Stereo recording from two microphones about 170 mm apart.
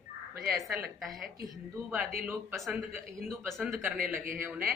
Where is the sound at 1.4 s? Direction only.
15° right (ahead or behind).